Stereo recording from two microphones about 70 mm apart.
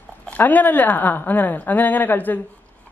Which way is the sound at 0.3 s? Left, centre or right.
Left.